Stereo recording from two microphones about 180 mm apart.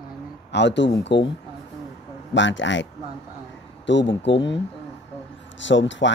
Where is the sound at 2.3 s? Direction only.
90° left.